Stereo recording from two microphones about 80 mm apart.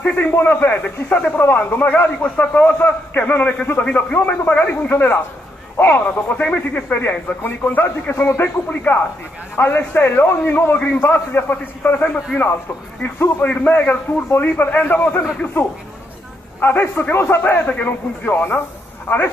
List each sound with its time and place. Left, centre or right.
0.0 s speech: left
16.6 s speech: left